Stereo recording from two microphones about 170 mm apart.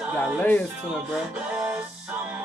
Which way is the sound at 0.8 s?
5° right (ahead or behind).